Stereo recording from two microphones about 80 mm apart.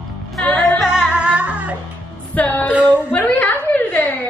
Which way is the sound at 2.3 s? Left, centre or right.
Left.